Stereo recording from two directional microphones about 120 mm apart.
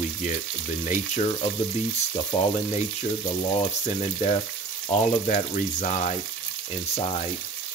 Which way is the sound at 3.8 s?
70° left (ahead or behind).